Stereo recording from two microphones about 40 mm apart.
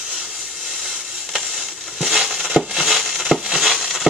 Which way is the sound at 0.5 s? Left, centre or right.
Centre.